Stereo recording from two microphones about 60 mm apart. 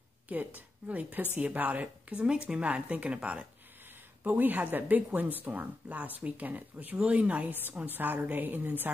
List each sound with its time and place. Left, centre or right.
0.3 s a woman's voice: right